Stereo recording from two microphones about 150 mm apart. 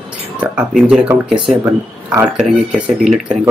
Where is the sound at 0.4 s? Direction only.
5° right (ahead or behind).